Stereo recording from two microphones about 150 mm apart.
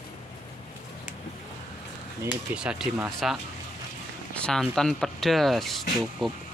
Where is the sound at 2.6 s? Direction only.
5° right (ahead or behind).